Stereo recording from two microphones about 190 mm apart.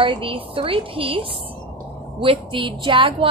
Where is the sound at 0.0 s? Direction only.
25° right (ahead or behind).